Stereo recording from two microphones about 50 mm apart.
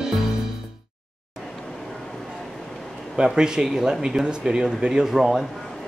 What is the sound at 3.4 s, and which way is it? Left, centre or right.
Speech, centre.